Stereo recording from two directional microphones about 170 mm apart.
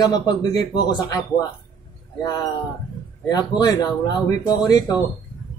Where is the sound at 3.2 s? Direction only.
25° left (ahead or behind).